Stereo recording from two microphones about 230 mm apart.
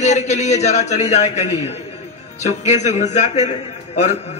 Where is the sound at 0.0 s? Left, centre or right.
Left.